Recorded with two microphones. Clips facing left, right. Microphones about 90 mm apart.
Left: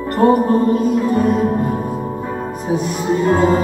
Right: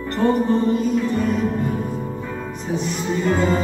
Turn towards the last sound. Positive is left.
turn(degrees=45)  # may be behind; listen again after turning